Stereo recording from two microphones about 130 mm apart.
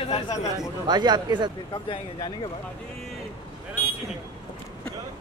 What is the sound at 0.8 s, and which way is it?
Speech, 35° right (ahead or behind).